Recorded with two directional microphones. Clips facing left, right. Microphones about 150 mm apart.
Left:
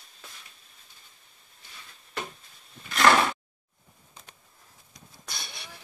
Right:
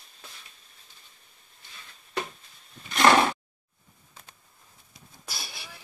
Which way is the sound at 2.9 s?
30° right (ahead or behind).